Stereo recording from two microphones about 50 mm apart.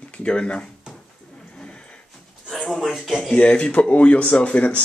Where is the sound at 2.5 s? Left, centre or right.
Centre.